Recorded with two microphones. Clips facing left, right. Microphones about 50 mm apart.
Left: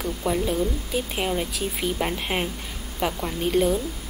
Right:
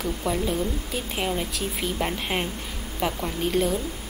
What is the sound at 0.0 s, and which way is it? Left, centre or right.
Speech, centre.